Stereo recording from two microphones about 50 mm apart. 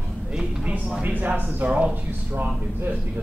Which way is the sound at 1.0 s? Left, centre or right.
Right.